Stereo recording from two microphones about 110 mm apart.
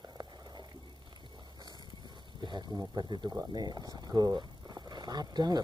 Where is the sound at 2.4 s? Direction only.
40° right (ahead or behind).